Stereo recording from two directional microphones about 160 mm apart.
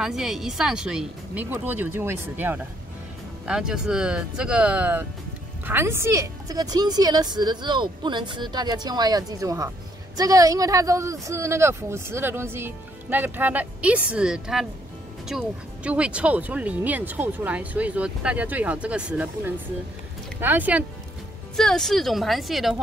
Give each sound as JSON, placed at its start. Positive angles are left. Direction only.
{"t": 0.0, "sound": "a woman's voice", "side_deg": -5}
{"t": 21.5, "sound": "speech", "side_deg": 5}